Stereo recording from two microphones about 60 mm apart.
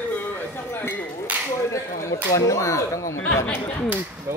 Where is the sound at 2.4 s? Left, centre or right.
Left.